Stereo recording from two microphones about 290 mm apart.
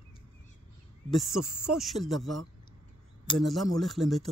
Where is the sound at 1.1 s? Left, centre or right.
Centre.